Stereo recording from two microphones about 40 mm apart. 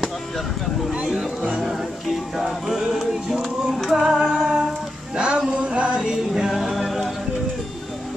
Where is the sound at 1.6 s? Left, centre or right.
Centre.